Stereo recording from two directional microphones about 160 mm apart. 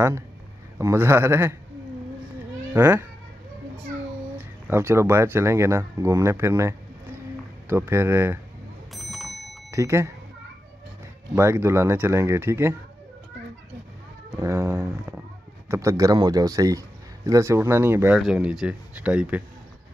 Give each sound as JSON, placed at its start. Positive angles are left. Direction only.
{"t": 0.7, "sound": "speech", "side_deg": -15}
{"t": 2.7, "sound": "speech", "side_deg": -15}
{"t": 4.6, "sound": "speech", "side_deg": -15}
{"t": 8.9, "sound": "bicycle bell", "side_deg": 0}
{"t": 9.7, "sound": "speech", "side_deg": -15}
{"t": 11.3, "sound": "speech", "side_deg": -15}
{"t": 14.3, "sound": "speech", "side_deg": -20}